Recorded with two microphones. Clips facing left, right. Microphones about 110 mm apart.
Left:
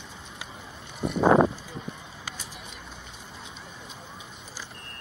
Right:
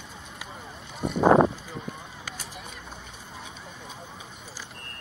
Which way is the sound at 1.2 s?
30° right (ahead or behind).